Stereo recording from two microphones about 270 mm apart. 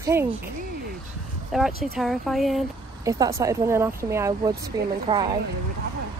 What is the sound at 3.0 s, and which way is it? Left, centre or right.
Speech, centre.